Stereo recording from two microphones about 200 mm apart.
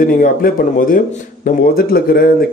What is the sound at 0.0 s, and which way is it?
A man's voice, 45° left (ahead or behind).